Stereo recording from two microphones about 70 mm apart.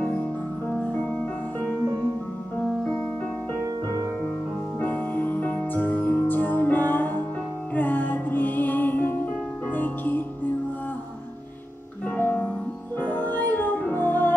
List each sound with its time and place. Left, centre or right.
0.7 s music: left
2.8 s music: left
4.7 s music: left
12.2 s music: left